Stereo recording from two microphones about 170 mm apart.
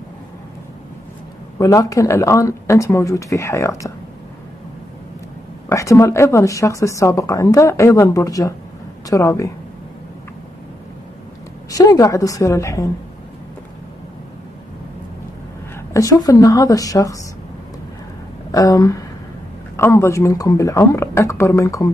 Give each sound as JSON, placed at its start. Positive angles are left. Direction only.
{"t": 1.6, "sound": "speech", "side_deg": 20}
{"t": 5.7, "sound": "speech", "side_deg": 20}
{"t": 11.7, "sound": "speech", "side_deg": 20}
{"t": 15.9, "sound": "speech", "side_deg": 20}
{"t": 18.5, "sound": "speech", "side_deg": 20}